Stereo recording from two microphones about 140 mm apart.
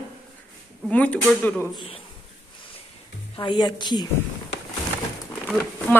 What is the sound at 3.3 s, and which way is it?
Speech, 35° left (ahead or behind).